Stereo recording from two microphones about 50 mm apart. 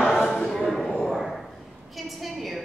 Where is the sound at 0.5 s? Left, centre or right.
Centre.